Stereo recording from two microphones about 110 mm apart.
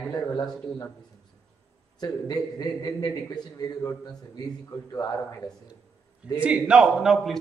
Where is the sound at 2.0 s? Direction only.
35° left (ahead or behind).